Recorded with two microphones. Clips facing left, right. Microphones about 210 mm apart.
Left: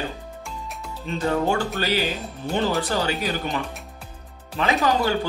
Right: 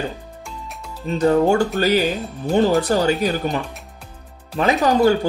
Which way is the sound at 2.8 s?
45° right (ahead or behind).